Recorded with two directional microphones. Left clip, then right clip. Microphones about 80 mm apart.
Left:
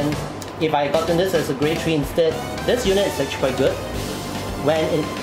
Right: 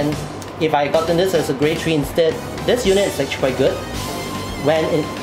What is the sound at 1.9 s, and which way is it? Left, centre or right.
Speech, right.